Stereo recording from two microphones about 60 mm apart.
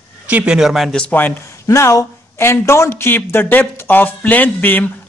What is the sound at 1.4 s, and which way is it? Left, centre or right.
Speech, left.